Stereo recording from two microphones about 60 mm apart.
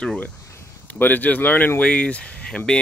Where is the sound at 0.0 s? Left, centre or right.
Centre.